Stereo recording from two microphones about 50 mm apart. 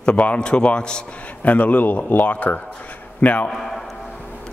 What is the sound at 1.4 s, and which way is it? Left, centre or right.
A man's voice, left.